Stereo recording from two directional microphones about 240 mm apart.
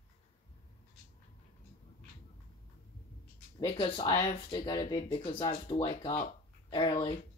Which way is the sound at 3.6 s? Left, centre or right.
Left.